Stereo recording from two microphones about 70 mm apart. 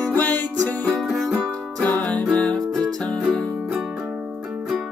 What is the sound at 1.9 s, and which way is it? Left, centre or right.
Music, centre.